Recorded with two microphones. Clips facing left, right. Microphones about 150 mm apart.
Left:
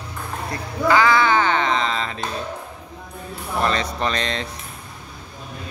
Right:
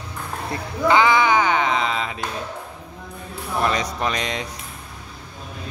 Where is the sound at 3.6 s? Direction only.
10° right (ahead or behind).